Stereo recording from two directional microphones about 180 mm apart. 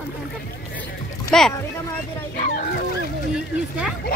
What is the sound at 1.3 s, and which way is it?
Speech, 5° left (ahead or behind).